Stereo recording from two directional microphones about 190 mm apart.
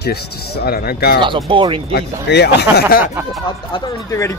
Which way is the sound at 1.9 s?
60° left (ahead or behind).